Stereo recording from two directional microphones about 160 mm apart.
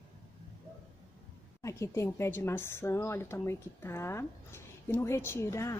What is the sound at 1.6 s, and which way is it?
A woman's voice, 20° left (ahead or behind).